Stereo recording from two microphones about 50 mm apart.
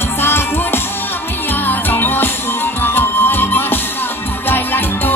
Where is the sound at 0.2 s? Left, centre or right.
Left.